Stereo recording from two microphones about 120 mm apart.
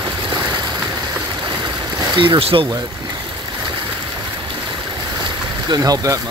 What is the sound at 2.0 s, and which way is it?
Speech, 40° right (ahead or behind).